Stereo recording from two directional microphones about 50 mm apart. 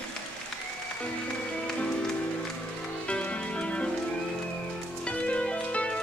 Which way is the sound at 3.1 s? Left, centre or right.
Left.